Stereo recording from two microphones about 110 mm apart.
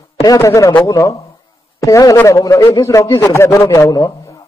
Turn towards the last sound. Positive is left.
turn(degrees=30)  # may be behind; listen again after turning